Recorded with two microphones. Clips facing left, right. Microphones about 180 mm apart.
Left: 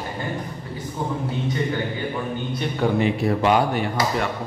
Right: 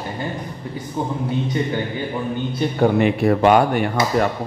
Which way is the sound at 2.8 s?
55° right (ahead or behind).